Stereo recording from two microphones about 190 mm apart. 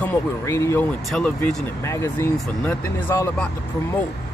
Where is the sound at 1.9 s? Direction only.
15° left (ahead or behind).